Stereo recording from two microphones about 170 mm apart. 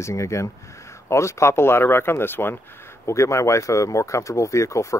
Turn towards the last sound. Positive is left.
turn(degrees=15)  # may be behind; listen again after turning